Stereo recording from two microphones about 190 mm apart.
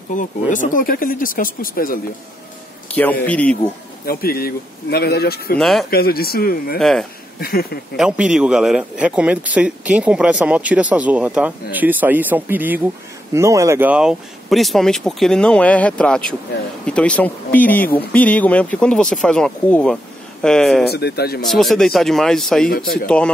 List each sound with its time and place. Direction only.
0.1 s speech: 45° left (ahead or behind)
2.9 s speech: 10° left (ahead or behind)
4.0 s speech: 50° left (ahead or behind)
5.6 s speech: centre (ahead or behind)
5.9 s speech: 55° left (ahead or behind)
6.8 s speech: centre (ahead or behind)
7.3 s speech: 55° left (ahead or behind)
8.0 s a man's voice: 5° right (ahead or behind)
20.8 s speech: 55° left (ahead or behind)
21.4 s speech: centre (ahead or behind)
22.7 s speech: 50° left (ahead or behind)
23.0 s speech: 5° left (ahead or behind)